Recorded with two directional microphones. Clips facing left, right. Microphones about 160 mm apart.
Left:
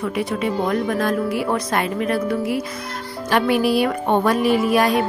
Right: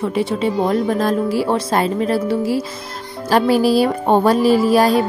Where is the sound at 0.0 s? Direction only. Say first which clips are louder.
Right 4 dB; 25° right (ahead or behind).